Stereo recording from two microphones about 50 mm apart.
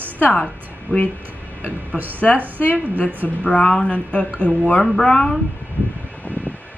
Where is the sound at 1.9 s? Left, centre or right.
Right.